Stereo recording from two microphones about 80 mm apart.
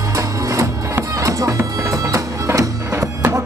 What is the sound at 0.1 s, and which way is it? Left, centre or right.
Music, right.